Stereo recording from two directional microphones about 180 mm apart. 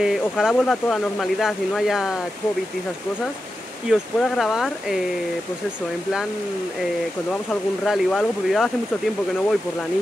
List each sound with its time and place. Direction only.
0.0 s speech: 5° right (ahead or behind)
3.9 s speech: centre (ahead or behind)
7.8 s speech: centre (ahead or behind)